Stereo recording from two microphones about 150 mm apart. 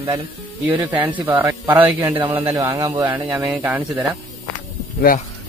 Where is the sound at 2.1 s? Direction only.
35° right (ahead or behind).